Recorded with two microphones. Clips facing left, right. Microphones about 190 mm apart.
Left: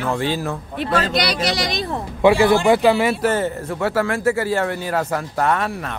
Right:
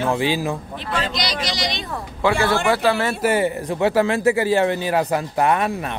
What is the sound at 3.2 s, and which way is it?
Speech, 10° right (ahead or behind).